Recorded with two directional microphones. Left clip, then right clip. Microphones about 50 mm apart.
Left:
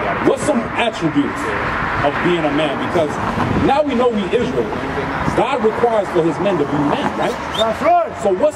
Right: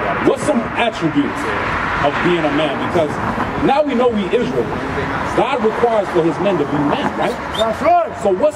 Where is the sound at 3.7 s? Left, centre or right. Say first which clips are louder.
Right 1 dB; centre.